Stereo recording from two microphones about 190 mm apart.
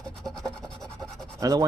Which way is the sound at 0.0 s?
5° left (ahead or behind).